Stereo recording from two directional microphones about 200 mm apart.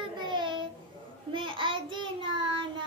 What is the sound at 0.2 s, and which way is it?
Child singing, 25° right (ahead or behind).